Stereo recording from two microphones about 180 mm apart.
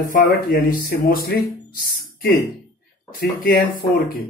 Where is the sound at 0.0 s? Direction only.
50° left (ahead or behind).